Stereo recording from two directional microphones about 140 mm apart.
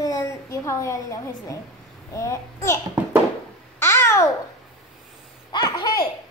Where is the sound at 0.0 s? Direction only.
25° left (ahead or behind).